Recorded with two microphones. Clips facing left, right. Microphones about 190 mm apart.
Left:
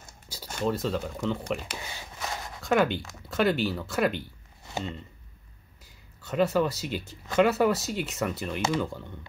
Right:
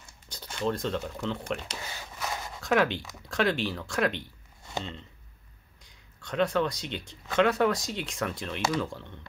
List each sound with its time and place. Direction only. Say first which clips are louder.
0.3 s zipper: left 2 dB; 10° left (ahead or behind)
0.7 s speech: left 1 dB; 5° left (ahead or behind)
2.1 s zipper: right 1 dB; centre (ahead or behind)
3.2 s speech: left 2 dB; centre (ahead or behind)